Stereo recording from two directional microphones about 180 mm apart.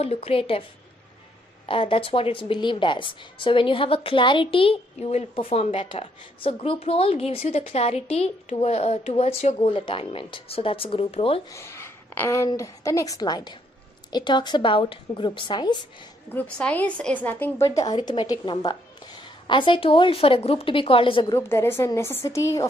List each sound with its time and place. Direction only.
0.0 s a woman's voice: 35° left (ahead or behind)
1.7 s a woman's voice: 30° left (ahead or behind)
11.5 s a woman's voice: 15° left (ahead or behind)
16.3 s a woman's voice: 5° left (ahead or behind); by 21.4 s 30° left (ahead or behind)
21.4 s speech: 15° left (ahead or behind)